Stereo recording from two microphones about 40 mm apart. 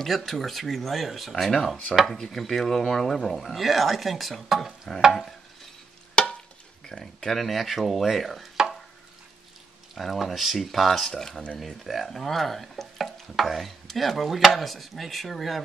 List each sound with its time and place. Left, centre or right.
0.0 s speech: centre
6.2 s a sound: left
6.9 s speech: left
7.2 s speech: centre
9.9 s speech: centre